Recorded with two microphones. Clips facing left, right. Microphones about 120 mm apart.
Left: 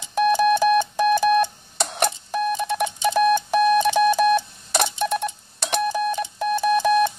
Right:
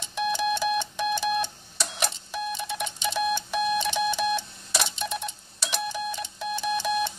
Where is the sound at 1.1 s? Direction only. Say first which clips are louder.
Left 9 dB; 50° left (ahead or behind).